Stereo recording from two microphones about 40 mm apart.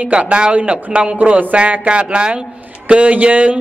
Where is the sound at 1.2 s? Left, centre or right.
Right.